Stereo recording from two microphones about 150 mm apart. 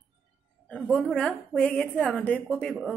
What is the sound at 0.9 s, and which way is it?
A woman's voice, 5° left (ahead or behind).